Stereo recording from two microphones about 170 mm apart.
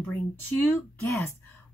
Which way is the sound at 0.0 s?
10° left (ahead or behind).